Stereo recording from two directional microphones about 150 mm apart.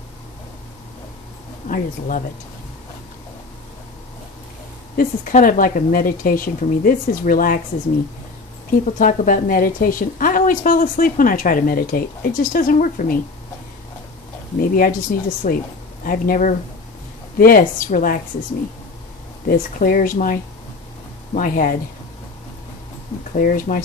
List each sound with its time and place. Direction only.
1.7 s a woman's voice: 60° left (ahead or behind)
4.9 s speech: 65° left (ahead or behind)
8.6 s a woman's voice: 60° left (ahead or behind)
14.6 s speech: 70° left (ahead or behind)
19.4 s speech: 75° left (ahead or behind)
21.4 s a woman's voice: 65° left (ahead or behind)
23.3 s speech: 65° left (ahead or behind)